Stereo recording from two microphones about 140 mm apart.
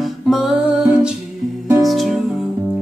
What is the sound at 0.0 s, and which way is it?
Music, centre (ahead or behind).